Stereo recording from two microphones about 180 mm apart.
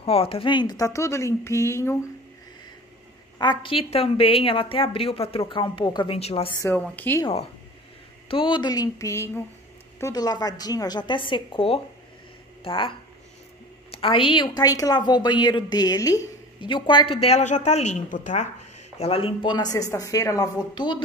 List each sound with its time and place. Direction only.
0.0 s speech: 30° left (ahead or behind); by 2.0 s 15° left (ahead or behind)
3.3 s a woman's voice: 25° left (ahead or behind)
6.6 s speech: 10° left (ahead or behind)
8.3 s a woman's voice: 30° left (ahead or behind)
13.9 s a woman's voice: 30° left (ahead or behind)
18.9 s a woman's voice: 30° left (ahead or behind)